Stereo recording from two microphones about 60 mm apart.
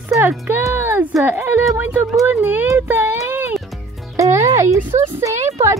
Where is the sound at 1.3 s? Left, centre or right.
Right.